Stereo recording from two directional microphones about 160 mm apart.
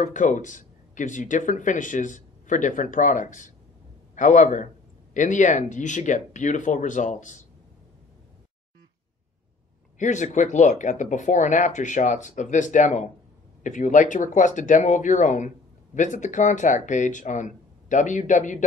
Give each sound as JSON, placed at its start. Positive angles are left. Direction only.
{"t": 0.0, "sound": "a man's voice", "side_deg": 50}
{"t": 9.9, "sound": "speech", "side_deg": 50}